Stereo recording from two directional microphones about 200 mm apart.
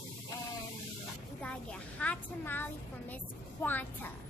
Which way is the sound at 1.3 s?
5° left (ahead or behind).